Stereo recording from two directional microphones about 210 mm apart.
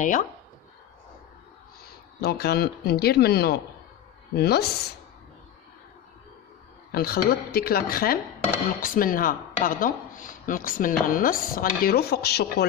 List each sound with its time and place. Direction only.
0.0 s speech: 35° left (ahead or behind)
2.2 s speech: 50° left (ahead or behind)
6.9 s speech: 45° left (ahead or behind)